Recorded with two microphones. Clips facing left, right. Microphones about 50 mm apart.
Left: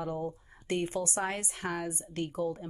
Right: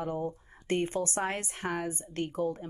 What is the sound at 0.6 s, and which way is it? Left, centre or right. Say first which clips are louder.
A woman's voice: right 2 dB; right.